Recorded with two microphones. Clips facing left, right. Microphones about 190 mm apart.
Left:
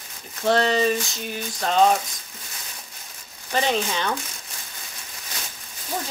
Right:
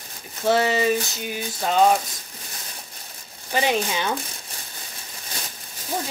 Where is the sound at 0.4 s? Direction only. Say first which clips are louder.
Even; 5° right (ahead or behind).